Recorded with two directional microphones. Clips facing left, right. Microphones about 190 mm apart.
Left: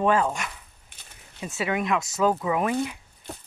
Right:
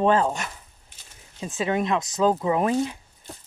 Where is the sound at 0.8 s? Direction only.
60° left (ahead or behind).